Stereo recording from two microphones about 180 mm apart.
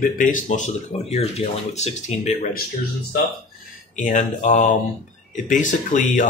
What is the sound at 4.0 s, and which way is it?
Speech, 45° left (ahead or behind).